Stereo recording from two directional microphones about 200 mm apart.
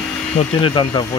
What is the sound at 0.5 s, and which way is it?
Speech, 25° left (ahead or behind).